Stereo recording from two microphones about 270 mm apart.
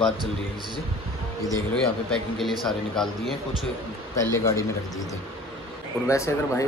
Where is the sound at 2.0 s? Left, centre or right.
Centre.